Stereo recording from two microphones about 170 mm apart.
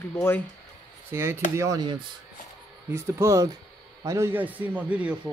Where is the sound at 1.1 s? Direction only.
15° right (ahead or behind).